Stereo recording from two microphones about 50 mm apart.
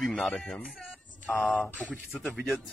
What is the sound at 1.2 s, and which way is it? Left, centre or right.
Speech, left.